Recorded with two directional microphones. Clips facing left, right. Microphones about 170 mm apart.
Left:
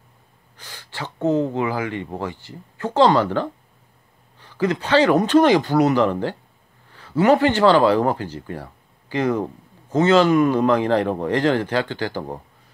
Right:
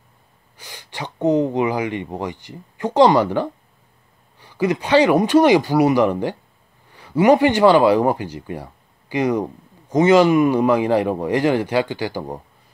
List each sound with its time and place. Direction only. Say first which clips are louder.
0.6 s speech: right 1 dB; 15° right (ahead or behind)